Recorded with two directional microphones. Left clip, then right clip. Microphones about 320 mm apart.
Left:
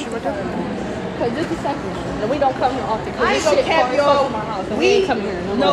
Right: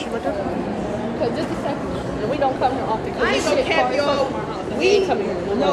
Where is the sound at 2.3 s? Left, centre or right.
Centre.